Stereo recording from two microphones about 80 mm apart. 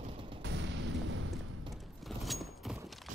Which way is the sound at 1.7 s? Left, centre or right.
Centre.